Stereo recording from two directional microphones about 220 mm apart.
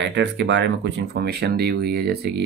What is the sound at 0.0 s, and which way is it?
Speech, 55° right (ahead or behind).